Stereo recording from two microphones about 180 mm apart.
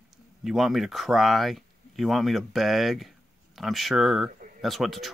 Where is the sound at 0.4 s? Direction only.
Centre (ahead or behind).